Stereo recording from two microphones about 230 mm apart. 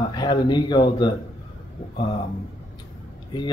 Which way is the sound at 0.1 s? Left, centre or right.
Centre.